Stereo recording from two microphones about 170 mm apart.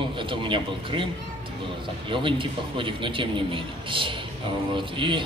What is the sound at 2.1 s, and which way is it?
Speech, 30° right (ahead or behind).